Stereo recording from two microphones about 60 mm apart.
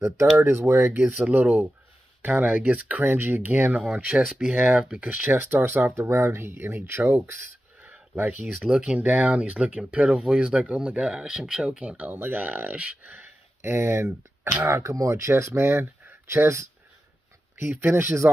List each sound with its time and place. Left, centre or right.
0.2 s speech: right
1.0 s speech: right
4.5 s speech: centre
5.3 s speech: right
6.0 s speech: right
8.2 s speech: right
8.6 s speech: centre
12.1 s speech: right